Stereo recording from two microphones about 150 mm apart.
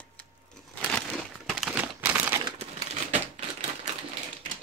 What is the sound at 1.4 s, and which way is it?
Crumpling, 5° right (ahead or behind).